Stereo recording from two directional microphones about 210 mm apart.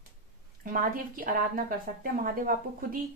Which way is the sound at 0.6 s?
40° right (ahead or behind).